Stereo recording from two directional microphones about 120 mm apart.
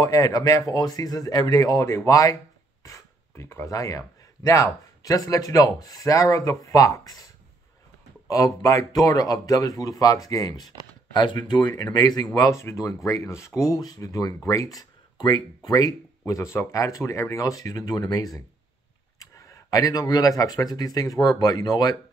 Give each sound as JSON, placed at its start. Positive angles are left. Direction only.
{"t": 0.0, "sound": "speech", "side_deg": 30}
{"t": 8.3, "sound": "speech", "side_deg": 30}